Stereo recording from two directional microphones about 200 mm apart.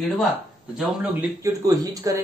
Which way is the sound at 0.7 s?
5° right (ahead or behind).